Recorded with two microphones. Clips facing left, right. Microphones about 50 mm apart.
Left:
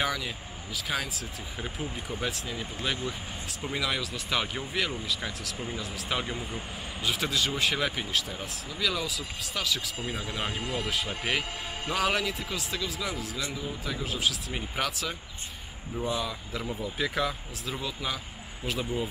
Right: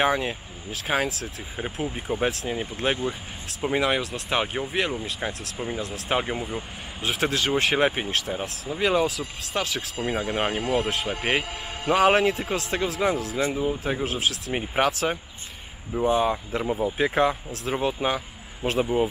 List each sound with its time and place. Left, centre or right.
0.0 s speech: right
6.0 s speech: right
7.0 s speech: right
14.9 s speech: right
16.1 s speech: right